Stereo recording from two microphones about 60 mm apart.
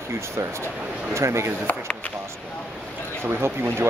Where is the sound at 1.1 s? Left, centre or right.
Right.